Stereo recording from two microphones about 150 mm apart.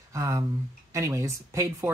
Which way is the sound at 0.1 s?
20° right (ahead or behind).